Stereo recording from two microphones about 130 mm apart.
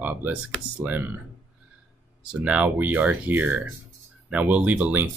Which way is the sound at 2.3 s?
10° right (ahead or behind).